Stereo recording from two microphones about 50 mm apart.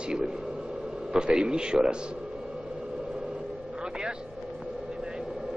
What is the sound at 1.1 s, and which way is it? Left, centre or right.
Speech, centre.